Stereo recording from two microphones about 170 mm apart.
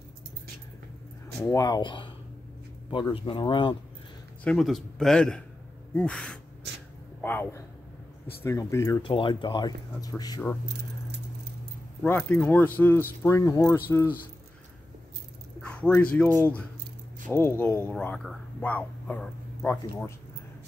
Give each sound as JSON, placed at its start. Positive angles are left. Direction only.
{"t": 1.4, "sound": "speech", "side_deg": 20}
{"t": 4.5, "sound": "a man's voice", "side_deg": 0}
{"t": 9.0, "sound": "speech", "side_deg": 30}
{"t": 12.0, "sound": "speech", "side_deg": 10}
{"t": 15.6, "sound": "speech", "side_deg": 10}